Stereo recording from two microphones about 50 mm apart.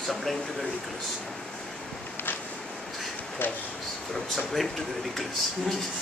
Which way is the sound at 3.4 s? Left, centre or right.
Left.